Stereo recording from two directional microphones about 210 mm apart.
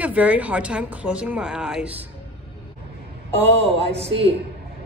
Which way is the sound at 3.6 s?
30° right (ahead or behind).